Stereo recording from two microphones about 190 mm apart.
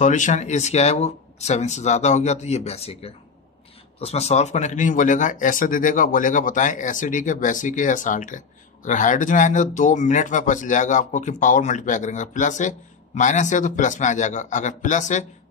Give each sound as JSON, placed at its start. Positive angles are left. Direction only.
{"t": 0.0, "sound": "speech", "side_deg": 40}